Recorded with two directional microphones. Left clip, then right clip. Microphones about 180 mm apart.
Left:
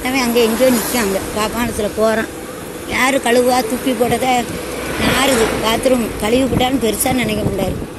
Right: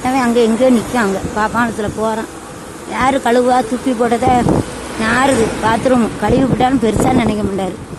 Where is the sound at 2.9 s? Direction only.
25° right (ahead or behind).